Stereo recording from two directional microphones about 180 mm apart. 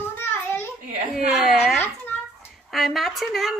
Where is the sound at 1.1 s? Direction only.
Centre (ahead or behind).